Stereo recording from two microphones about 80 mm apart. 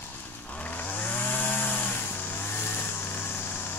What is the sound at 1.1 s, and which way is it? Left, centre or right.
Chainsaw, left.